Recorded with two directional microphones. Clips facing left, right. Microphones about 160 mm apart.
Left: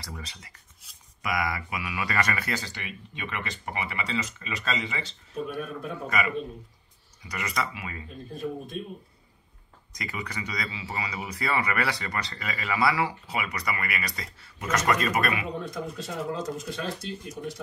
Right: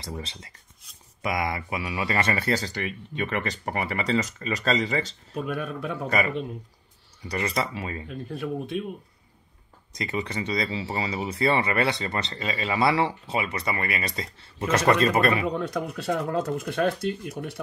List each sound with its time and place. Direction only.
0.0 s speech: 25° right (ahead or behind)
5.3 s speech: 80° right
6.0 s speech: 35° right (ahead or behind)
8.1 s speech: 75° right (ahead or behind)
9.9 s speech: 25° right (ahead or behind)
15.5 s speech: 70° right (ahead or behind)